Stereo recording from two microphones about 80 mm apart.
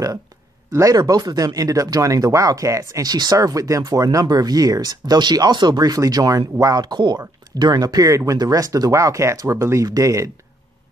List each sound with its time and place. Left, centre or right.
0.7 s speech: right